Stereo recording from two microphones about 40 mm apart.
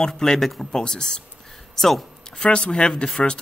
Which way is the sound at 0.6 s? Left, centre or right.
Centre.